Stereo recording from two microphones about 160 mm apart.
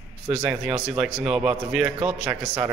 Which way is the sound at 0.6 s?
30° right (ahead or behind).